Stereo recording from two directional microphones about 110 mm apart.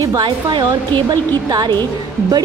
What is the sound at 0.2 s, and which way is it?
A woman's voice, 45° right (ahead or behind).